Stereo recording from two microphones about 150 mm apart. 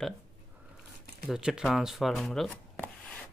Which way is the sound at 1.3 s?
5° right (ahead or behind).